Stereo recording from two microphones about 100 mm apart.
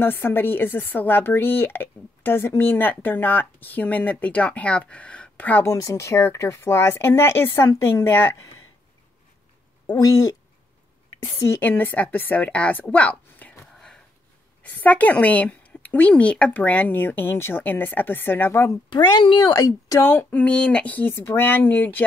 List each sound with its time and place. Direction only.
0.0 s a woman's voice: 20° left (ahead or behind)
5.8 s a woman's voice: 35° left (ahead or behind)
9.9 s speech: 35° left (ahead or behind)
11.3 s a woman's voice: 25° left (ahead or behind)
13.7 s sniff: 5° left (ahead or behind)
14.6 s a woman's voice: 15° left (ahead or behind)
18.9 s speech: 50° left (ahead or behind)
19.6 s speech: 35° left (ahead or behind)
20.1 s a woman's voice: 20° left (ahead or behind)